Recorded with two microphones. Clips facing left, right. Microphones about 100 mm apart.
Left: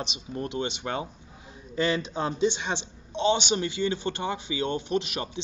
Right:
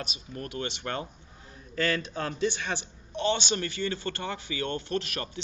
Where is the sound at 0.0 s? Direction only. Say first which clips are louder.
Left 5 dB; 25° left (ahead or behind).